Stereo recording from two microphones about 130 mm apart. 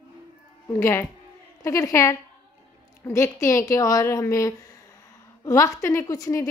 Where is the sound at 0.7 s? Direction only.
20° left (ahead or behind).